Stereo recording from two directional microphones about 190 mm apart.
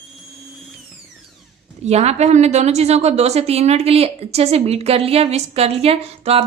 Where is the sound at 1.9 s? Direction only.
35° right (ahead or behind).